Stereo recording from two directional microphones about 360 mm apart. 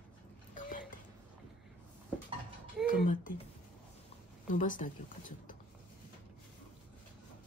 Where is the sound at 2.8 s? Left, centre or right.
Left.